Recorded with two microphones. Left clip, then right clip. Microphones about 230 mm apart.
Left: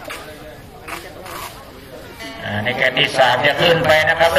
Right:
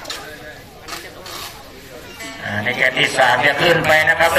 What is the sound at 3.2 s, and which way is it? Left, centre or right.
Mantra, left.